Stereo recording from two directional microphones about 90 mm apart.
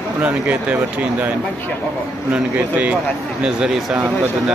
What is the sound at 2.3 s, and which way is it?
A man's voice, 15° right (ahead or behind).